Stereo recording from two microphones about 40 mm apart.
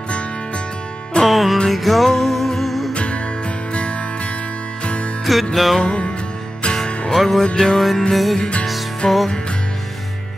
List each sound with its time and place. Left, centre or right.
1.2 s music: centre
2.9 s music: left
5.2 s music: centre
5.8 s music: left
7.2 s music: centre
7.4 s music: centre
7.7 s music: centre
8.4 s music: left
9.0 s music: centre